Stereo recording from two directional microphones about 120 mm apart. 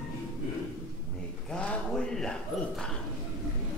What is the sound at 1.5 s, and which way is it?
Speech, 5° left (ahead or behind).